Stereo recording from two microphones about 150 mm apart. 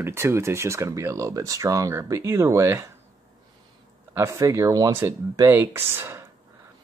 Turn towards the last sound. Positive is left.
turn(degrees=-15)  # may be behind; listen again after turning